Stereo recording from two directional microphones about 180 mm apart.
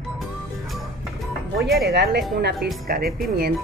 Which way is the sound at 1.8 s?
65° right (ahead or behind).